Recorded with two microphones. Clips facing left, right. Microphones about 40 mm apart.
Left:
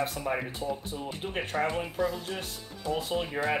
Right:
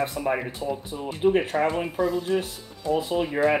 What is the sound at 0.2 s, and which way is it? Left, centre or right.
Speech, centre.